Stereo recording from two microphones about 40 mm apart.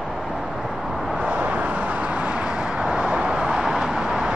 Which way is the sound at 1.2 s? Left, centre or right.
Right.